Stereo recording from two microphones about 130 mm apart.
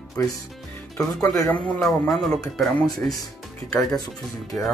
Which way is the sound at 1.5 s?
Centre (ahead or behind).